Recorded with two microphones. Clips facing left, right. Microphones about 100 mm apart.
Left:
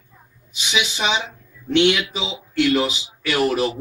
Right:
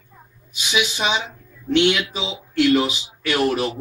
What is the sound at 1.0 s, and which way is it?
Speech, 5° right (ahead or behind).